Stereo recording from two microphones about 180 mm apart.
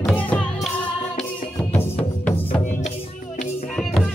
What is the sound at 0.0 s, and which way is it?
Music, 10° left (ahead or behind).